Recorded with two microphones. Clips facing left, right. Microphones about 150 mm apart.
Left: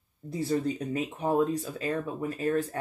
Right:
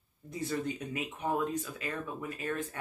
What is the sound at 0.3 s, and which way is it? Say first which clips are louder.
Speech: left 6 dB; 30° left (ahead or behind).